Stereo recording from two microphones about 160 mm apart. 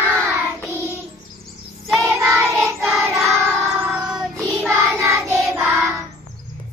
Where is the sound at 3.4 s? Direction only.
10° right (ahead or behind).